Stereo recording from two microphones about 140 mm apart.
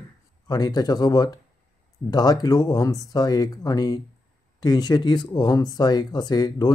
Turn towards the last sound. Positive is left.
turn(degrees=30)  # may be behind; listen again after turning